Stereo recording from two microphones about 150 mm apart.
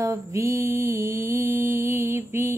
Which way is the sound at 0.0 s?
20° right (ahead or behind).